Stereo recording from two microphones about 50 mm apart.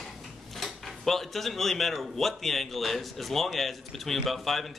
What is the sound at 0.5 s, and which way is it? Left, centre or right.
Speech, centre.